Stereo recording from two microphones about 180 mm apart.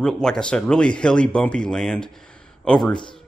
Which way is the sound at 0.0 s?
5° left (ahead or behind).